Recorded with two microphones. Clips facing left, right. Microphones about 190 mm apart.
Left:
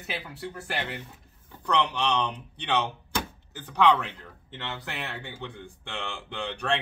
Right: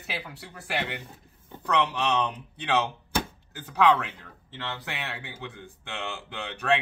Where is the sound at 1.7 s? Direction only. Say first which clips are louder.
Right 1 dB; 5° right (ahead or behind).